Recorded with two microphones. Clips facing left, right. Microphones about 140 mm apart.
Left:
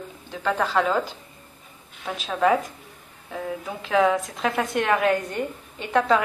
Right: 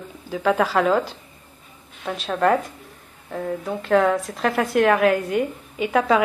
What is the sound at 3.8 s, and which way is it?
A woman's voice, centre (ahead or behind).